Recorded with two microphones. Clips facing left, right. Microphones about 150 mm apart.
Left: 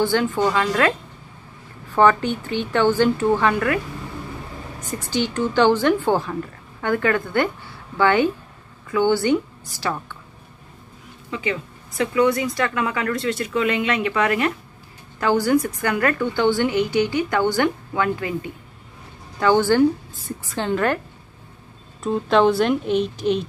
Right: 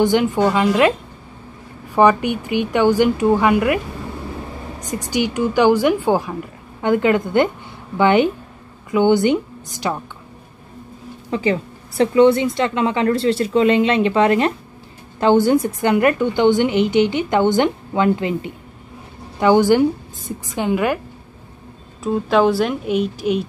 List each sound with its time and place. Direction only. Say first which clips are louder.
0.0 s a woman's voice: right 4 dB; 15° right (ahead or behind)
2.0 s a woman's voice: right 3 dB; 15° right (ahead or behind)
4.9 s a woman's voice: right 3 dB; 15° right (ahead or behind)
11.2 s a woman's voice: right 7 dB; 35° right (ahead or behind); by 21.0 s 10° right (ahead or behind)
22.0 s speech: right 1 dB; 5° right (ahead or behind)